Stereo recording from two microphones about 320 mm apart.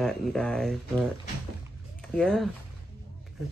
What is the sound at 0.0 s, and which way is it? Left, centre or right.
Speech, centre.